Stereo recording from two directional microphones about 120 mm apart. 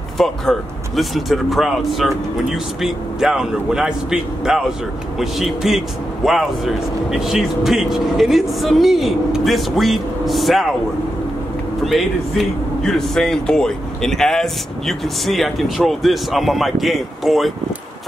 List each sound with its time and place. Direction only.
0.2 s speech: centre (ahead or behind)
11.8 s speech: centre (ahead or behind)